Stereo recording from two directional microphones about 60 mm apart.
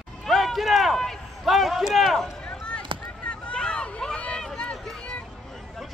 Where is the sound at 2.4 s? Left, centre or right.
Centre.